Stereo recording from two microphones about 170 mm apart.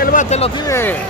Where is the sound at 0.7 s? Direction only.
10° left (ahead or behind).